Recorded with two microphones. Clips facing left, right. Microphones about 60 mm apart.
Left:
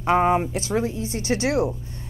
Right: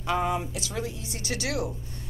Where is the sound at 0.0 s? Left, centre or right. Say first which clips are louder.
Left 8 dB; left.